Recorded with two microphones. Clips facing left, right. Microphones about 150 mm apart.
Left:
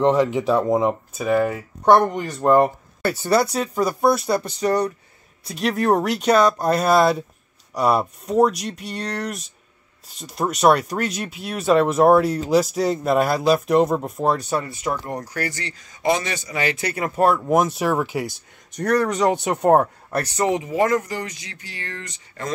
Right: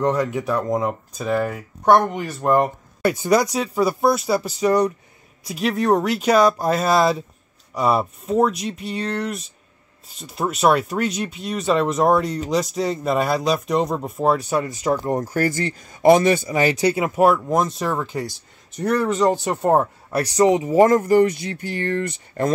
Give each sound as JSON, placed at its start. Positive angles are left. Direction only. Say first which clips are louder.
{"t": 0.0, "sound": "speech", "louder": "left 3 dB", "side_deg": 25}
{"t": 1.1, "sound": "speech", "louder": "left 1 dB", "side_deg": 5}
{"t": 15.2, "sound": "speech", "louder": "right 7 dB", "side_deg": -45}
{"t": 16.9, "sound": "speech", "louder": "right 2 dB", "side_deg": -5}
{"t": 17.4, "sound": "speech", "louder": "left 2 dB", "side_deg": 10}
{"t": 18.8, "sound": "speech", "louder": "even", "side_deg": -5}
{"t": 20.6, "sound": "speech", "louder": "right 5 dB", "side_deg": -40}